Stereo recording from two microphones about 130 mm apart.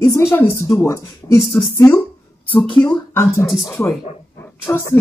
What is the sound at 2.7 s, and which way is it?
Speech, 35° left (ahead or behind).